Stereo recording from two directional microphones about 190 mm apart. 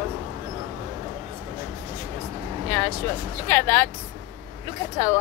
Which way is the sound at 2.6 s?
10° left (ahead or behind).